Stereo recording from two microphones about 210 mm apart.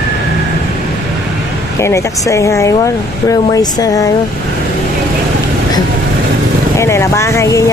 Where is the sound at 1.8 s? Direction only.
15° left (ahead or behind).